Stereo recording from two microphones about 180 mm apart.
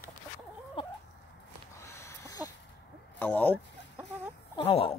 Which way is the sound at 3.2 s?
10° left (ahead or behind).